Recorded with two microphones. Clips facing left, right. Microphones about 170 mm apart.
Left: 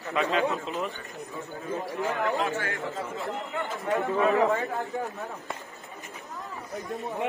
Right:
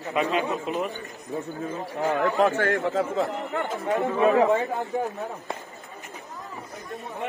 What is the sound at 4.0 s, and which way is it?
Speech, 20° right (ahead or behind).